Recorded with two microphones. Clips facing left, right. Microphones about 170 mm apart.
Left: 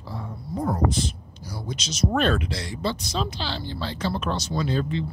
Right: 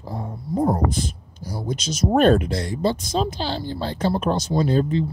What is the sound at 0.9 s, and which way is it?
Speech, 50° right (ahead or behind).